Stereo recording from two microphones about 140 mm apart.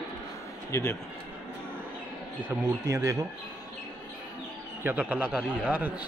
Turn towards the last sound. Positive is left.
turn(degrees=-10)  # may be behind; listen again after turning